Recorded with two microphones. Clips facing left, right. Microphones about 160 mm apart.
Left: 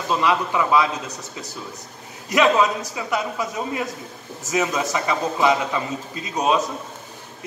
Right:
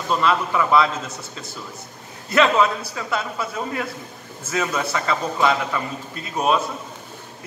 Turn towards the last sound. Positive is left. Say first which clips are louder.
# even
turn(degrees=20)  # may be behind; listen again after turning